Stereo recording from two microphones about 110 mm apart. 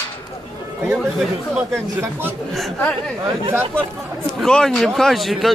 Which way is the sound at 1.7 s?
20° right (ahead or behind).